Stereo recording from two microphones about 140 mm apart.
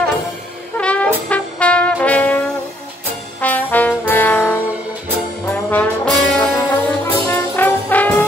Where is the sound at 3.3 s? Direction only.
10° left (ahead or behind).